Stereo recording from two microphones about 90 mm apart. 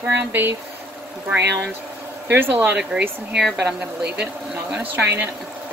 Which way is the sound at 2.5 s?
20° right (ahead or behind).